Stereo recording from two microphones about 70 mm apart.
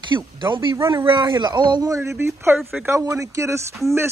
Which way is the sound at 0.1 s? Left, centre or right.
Right.